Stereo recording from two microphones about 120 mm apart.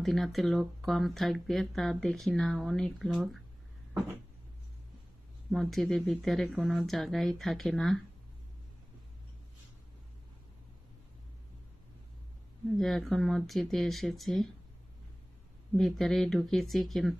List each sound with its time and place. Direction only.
0.0 s speech: centre (ahead or behind)
5.5 s speech: centre (ahead or behind)
12.7 s speech: centre (ahead or behind)
15.7 s speech: centre (ahead or behind)